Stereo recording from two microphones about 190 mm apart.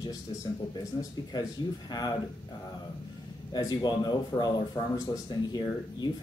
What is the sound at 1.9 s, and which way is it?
Speech, 20° left (ahead or behind).